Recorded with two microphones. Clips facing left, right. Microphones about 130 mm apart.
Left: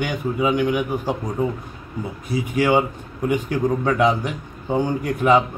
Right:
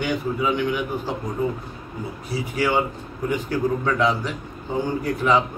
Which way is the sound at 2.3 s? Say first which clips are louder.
Left 4 dB; 15° left (ahead or behind).